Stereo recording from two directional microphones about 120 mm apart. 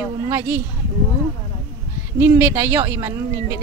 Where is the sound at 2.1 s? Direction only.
20° right (ahead or behind).